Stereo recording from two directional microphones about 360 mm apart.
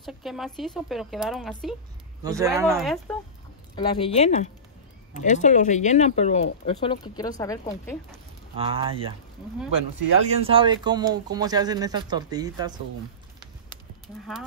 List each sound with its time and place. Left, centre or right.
0.0 s speech: centre
3.7 s speech: centre
8.1 s speech: centre
10.2 s speech: centre